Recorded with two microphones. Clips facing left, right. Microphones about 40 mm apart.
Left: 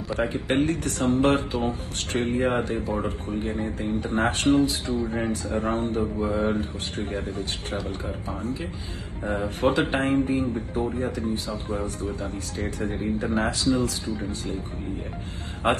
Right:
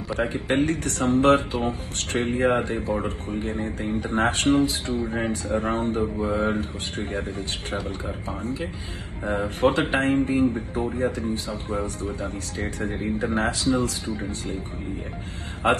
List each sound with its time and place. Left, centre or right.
0.3 s speech: right